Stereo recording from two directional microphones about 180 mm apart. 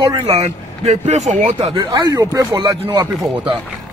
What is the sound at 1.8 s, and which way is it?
Speech, 20° right (ahead or behind).